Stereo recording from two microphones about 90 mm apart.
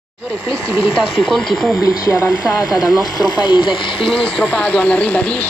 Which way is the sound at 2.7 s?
50° left (ahead or behind).